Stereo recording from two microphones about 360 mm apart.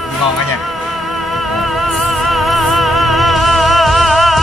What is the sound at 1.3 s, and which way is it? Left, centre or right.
Music, centre.